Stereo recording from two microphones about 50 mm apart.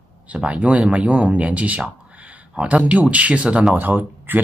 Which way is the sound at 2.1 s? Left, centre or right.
Right.